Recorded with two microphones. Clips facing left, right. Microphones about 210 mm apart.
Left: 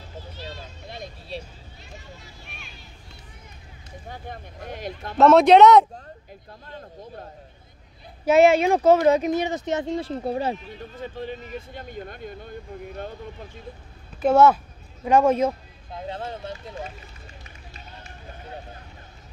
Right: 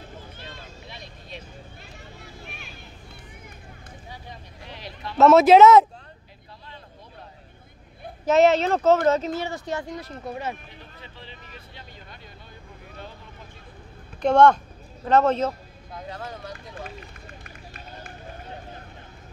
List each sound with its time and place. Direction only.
0.4 s a sound: 50° right (ahead or behind)
0.8 s vehicle: 45° left (ahead or behind)
2.4 s a sound: centre (ahead or behind)
4.1 s speech: 50° left (ahead or behind)
5.1 s speech: centre (ahead or behind)
8.3 s speech: 10° left (ahead or behind); by 10.6 s 30° left (ahead or behind)
11.0 s speech: 50° left (ahead or behind)
14.2 s speech: 5° left (ahead or behind)
15.9 s speech: 25° left (ahead or behind)
17.4 s run: 55° right (ahead or behind)